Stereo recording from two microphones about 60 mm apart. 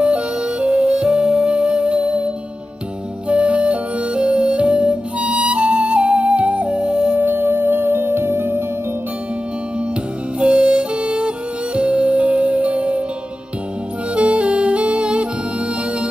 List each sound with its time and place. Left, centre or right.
0.0 s music: centre
7.2 s music: right
10.4 s music: centre
14.1 s music: right